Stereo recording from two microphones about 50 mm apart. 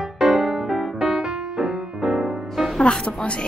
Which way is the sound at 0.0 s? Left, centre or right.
Centre.